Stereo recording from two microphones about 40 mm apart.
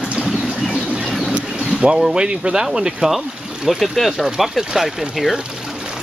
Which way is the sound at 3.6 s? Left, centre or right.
Centre.